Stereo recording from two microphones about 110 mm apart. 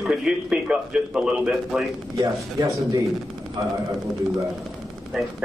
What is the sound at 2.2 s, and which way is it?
Speech, 30° right (ahead or behind).